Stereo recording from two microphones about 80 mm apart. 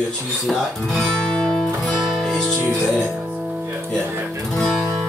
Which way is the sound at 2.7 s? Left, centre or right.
Centre.